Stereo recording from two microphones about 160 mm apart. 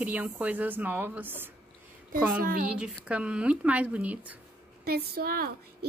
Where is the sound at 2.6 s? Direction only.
5° right (ahead or behind).